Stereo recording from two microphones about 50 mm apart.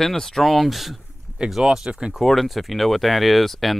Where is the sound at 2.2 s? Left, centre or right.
Centre.